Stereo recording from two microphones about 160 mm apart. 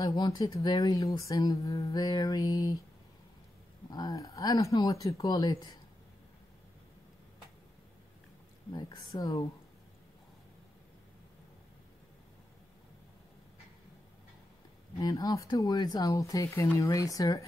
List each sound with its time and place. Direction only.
0.0 s speech: 25° left (ahead or behind)
3.9 s speech: 20° left (ahead or behind)
8.7 s speech: 25° left (ahead or behind)
15.0 s speech: 20° left (ahead or behind)